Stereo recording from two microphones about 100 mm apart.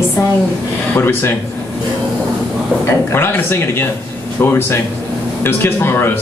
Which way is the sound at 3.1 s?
20° left (ahead or behind).